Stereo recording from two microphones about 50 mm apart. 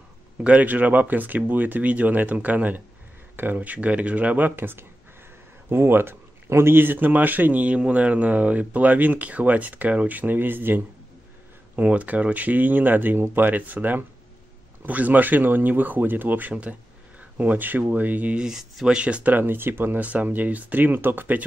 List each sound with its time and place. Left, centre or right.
0.4 s speech: right
0.7 s speech: right
11.7 s speech: right
18.3 s speech: centre
18.9 s speech: right
19.3 s speech: right
20.0 s speech: right